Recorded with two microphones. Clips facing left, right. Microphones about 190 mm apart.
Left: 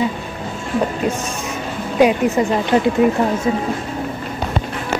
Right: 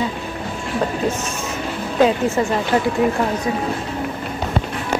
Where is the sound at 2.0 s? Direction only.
15° left (ahead or behind).